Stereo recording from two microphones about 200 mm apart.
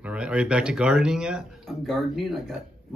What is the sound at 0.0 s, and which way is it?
Speech, 5° right (ahead or behind).